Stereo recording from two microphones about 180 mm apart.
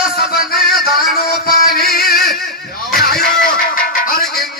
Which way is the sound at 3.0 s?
55° left (ahead or behind).